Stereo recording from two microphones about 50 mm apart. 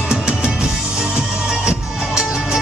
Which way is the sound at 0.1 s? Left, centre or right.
Centre.